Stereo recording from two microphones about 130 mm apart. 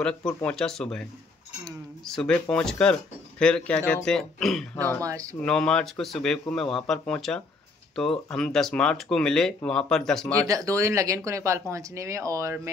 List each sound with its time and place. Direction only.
0.4 s speech: 5° left (ahead or behind)
2.1 s speech: 5° left (ahead or behind)
4.7 s speech: 15° left (ahead or behind)
5.0 s speech: 25° right (ahead or behind)
5.3 s speech: 10° left (ahead or behind)
10.5 s speech: 25° right (ahead or behind)